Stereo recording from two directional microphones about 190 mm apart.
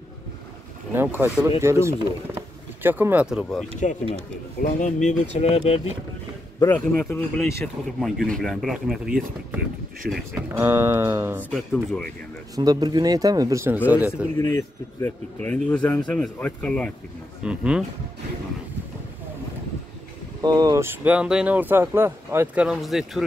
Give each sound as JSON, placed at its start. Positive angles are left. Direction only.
{"t": 0.9, "sound": "speech", "side_deg": -10}
{"t": 4.6, "sound": "speech", "side_deg": 40}
{"t": 6.6, "sound": "speech", "side_deg": 10}
{"t": 10.5, "sound": "speech", "side_deg": -10}
{"t": 11.5, "sound": "speech", "side_deg": 5}
{"t": 12.5, "sound": "speech", "side_deg": -20}
{"t": 14.4, "sound": "speech", "side_deg": 15}
{"t": 17.4, "sound": "speech", "side_deg": -5}
{"t": 20.4, "sound": "speech", "side_deg": -20}